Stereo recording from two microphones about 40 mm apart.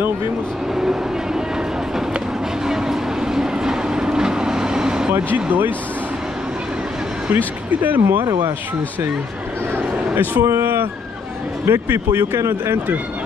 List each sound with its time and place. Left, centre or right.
0.7 s vehicle: centre
2.6 s train: centre
5.1 s speech: right
7.3 s speech: right
10.1 s a man's voice: right
11.6 s speech: right